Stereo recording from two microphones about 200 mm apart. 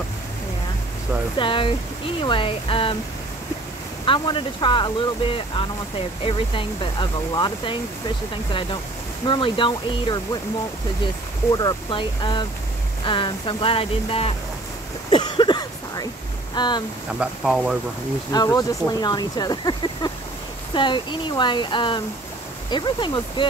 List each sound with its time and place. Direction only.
1.4 s speech: 25° left (ahead or behind)
4.0 s speech: 25° left (ahead or behind)
9.3 s speech: 25° left (ahead or behind)
11.5 s speech: 25° left (ahead or behind)
15.0 s a sound: 25° left (ahead or behind)
16.5 s speech: 20° left (ahead or behind)
17.2 s speech: centre (ahead or behind)
18.3 s speech: 20° left (ahead or behind)